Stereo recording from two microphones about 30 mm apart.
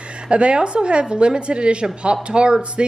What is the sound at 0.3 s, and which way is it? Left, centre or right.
A woman's voice, right.